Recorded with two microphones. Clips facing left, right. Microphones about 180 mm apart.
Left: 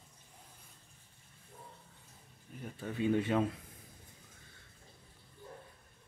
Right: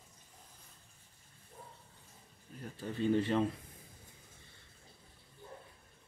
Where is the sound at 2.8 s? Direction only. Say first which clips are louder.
Even; centre (ahead or behind).